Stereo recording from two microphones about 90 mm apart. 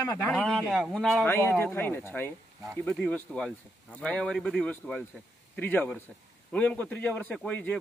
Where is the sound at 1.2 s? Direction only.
25° left (ahead or behind).